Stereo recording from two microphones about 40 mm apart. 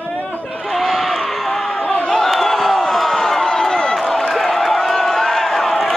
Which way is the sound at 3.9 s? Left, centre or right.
Centre.